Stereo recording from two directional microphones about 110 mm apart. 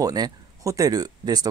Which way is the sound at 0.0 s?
35° right (ahead or behind).